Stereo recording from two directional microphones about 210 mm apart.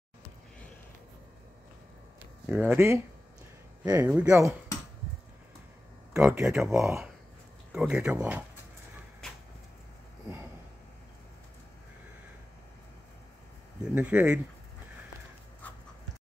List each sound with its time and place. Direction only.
2.4 s speech: 10° right (ahead or behind)
6.1 s speech: 10° right (ahead or behind)
13.9 s speech: 5° right (ahead or behind)